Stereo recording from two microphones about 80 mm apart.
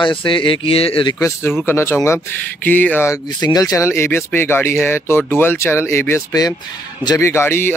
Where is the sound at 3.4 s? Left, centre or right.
Left.